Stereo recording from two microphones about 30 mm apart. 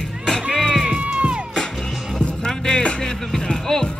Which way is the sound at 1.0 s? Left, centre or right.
Right.